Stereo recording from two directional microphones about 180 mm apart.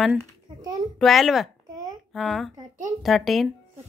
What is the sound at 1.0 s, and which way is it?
Speech, centre (ahead or behind).